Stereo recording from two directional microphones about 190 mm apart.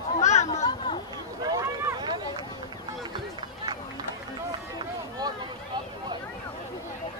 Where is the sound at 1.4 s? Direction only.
20° right (ahead or behind).